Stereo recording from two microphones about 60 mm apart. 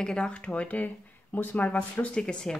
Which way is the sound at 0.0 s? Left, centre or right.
Centre.